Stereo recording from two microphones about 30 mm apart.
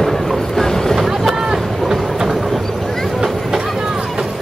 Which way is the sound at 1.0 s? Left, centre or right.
Centre.